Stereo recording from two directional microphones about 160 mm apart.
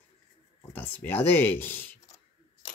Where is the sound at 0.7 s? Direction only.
10° left (ahead or behind).